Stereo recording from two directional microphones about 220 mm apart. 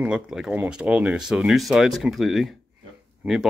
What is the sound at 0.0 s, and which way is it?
Speech, 5° right (ahead or behind).